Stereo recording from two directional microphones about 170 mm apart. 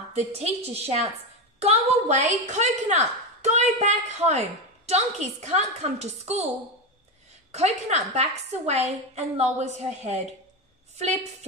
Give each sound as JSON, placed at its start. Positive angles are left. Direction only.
{"t": 0.1, "sound": "a woman's voice", "side_deg": -40}
{"t": 7.5, "sound": "a woman's voice", "side_deg": -40}